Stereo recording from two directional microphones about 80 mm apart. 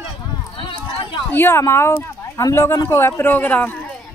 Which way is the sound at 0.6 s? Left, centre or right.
Left.